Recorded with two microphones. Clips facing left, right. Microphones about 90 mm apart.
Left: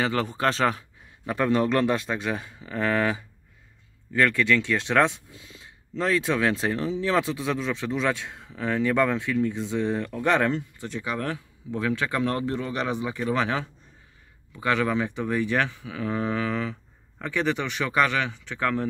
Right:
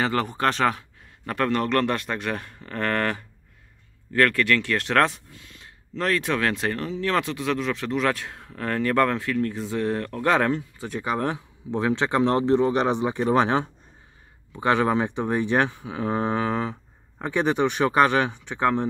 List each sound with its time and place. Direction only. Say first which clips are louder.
0.0 s speech: right 1 dB; centre (ahead or behind)
1.3 s speech: even; 10° left (ahead or behind); by 10.9 s 5° right (ahead or behind)
10.9 s speech: right 4 dB; 50° right (ahead or behind)
11.1 s a man's voice: right 4 dB; 25° right (ahead or behind)
17.2 s a man's voice: right 4 dB; 20° right (ahead or behind)